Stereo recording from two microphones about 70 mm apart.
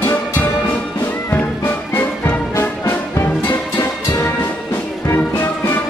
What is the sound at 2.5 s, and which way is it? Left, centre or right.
Music, left.